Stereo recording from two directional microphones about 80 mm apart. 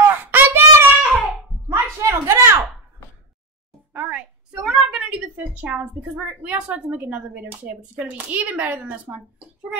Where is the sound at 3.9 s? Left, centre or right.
Centre.